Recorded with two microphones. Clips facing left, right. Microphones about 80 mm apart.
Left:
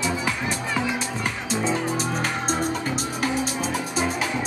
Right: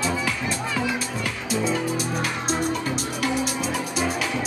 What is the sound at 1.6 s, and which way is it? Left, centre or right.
Music, left.